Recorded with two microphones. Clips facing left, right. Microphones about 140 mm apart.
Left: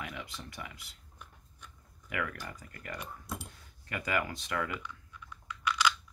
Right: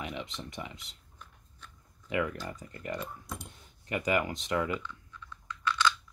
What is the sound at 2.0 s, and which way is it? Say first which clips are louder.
Speech: right 5 dB; 25° right (ahead or behind).